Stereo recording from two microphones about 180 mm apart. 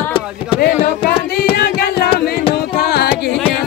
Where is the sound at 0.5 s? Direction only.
55° left (ahead or behind).